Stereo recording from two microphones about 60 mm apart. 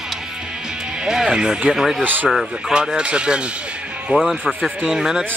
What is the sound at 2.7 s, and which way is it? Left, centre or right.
Speech, centre.